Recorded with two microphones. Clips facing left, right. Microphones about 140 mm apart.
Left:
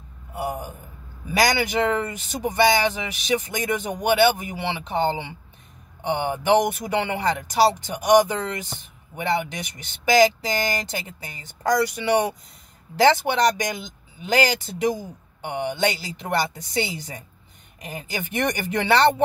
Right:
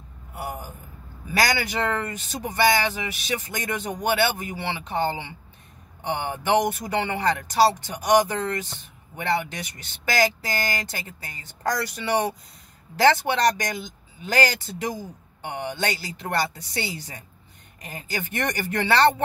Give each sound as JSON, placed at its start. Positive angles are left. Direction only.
{"t": 0.4, "sound": "a man's voice", "side_deg": 20}